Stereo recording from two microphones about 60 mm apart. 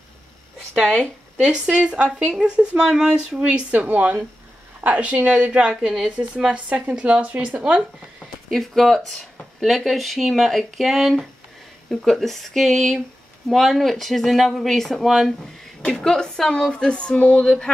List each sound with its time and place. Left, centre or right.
1.4 s a woman's voice: centre
8.5 s speech: centre